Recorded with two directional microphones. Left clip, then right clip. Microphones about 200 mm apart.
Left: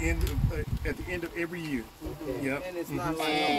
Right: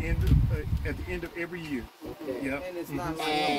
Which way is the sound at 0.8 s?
65° left (ahead or behind).